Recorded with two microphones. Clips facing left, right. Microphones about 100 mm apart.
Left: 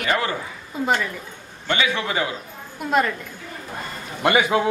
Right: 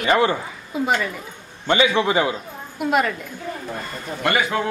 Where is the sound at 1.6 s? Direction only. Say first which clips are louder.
Right 5 dB; 25° right (ahead or behind).